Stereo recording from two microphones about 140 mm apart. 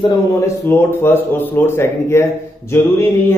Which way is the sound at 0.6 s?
15° left (ahead or behind).